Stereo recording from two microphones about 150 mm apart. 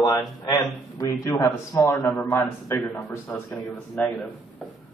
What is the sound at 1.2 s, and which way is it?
A man's voice, 20° left (ahead or behind).